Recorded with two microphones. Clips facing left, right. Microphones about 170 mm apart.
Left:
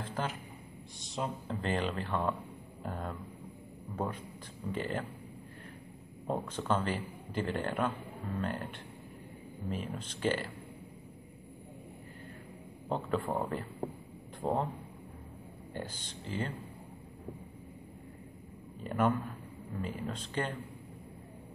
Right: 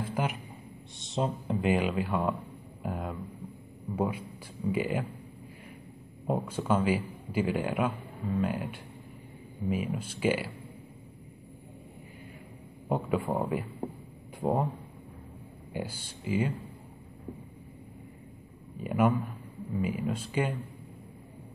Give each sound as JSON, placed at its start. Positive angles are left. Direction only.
{"t": 0.0, "sound": "a sound", "side_deg": -10}
{"t": 0.9, "sound": "speech", "side_deg": -25}
{"t": 1.5, "sound": "a man's voice", "side_deg": -10}
{"t": 6.2, "sound": "a man's voice", "side_deg": -10}
{"t": 12.8, "sound": "a man's voice", "side_deg": -5}
{"t": 15.7, "sound": "a man's voice", "side_deg": -10}
{"t": 18.8, "sound": "a man's voice", "side_deg": -10}